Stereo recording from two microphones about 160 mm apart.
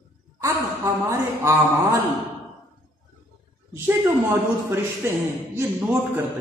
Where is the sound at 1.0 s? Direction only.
20° right (ahead or behind).